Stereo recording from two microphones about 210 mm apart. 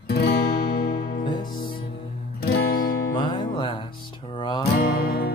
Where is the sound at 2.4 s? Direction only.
45° left (ahead or behind).